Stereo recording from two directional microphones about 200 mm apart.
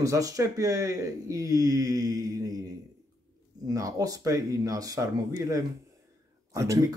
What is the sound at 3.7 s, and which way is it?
Speech, 15° right (ahead or behind).